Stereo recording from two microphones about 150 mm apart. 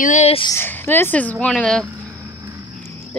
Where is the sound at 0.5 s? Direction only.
15° left (ahead or behind).